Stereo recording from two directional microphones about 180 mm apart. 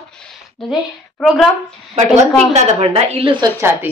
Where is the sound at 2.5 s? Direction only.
35° right (ahead or behind).